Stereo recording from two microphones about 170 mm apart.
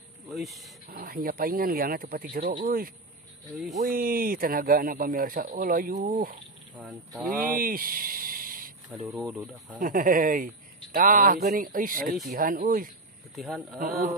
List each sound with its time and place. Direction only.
0.3 s speech: centre (ahead or behind)
0.8 s speech: 60° right (ahead or behind)
7.3 s a sound: 55° right (ahead or behind)
9.0 s speech: 20° right (ahead or behind)
9.8 s speech: 55° right (ahead or behind)
13.3 s speech: centre (ahead or behind)
13.7 s speech: 55° right (ahead or behind)